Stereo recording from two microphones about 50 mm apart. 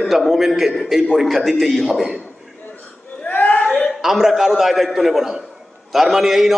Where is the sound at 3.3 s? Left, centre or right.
Left.